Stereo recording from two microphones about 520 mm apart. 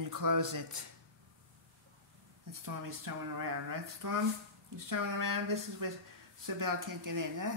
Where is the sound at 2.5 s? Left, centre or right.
Right.